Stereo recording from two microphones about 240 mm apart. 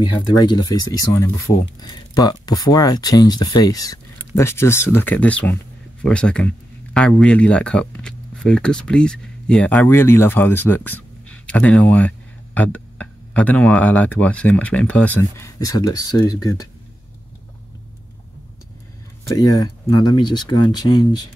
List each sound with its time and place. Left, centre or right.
0.0 s speech: centre
19.3 s speech: centre